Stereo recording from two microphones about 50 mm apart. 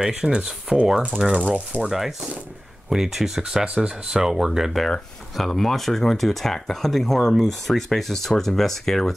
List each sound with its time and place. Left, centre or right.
0.0 s speech: centre
1.2 s speech: centre
1.8 s speech: centre